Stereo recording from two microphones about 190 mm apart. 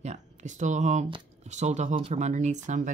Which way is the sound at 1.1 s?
35° right (ahead or behind).